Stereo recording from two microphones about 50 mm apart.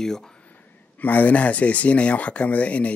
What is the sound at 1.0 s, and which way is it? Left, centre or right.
Speech, left.